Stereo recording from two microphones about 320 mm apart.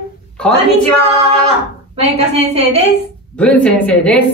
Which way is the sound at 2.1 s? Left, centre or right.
Centre.